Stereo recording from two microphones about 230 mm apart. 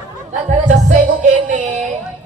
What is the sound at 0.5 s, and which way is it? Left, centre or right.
Music, right.